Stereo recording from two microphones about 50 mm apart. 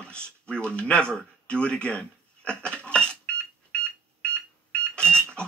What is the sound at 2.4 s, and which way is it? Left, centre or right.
Dishes, centre.